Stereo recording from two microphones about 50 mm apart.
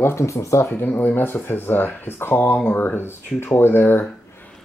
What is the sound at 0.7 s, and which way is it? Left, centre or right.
Speech, left.